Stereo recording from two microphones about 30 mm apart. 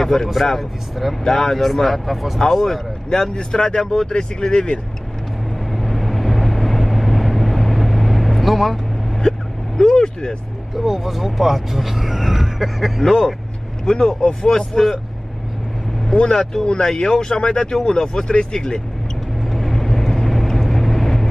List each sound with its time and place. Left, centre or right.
0.0 s a man's voice: centre
0.5 s speech: centre
1.2 s speech: centre
2.4 s speech: left
5.7 s vehicle: centre
9.8 s speech: left
10.8 s speech: centre
13.0 s speech: centre
14.7 s speech: centre
16.1 s speech: left
17.4 s speech: left
17.8 s speech: left
19.4 s vehicle: centre